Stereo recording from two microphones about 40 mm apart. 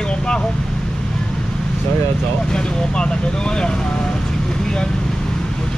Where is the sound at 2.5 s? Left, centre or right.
Left.